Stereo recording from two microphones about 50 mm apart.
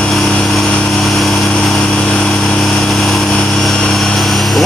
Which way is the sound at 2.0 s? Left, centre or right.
Centre.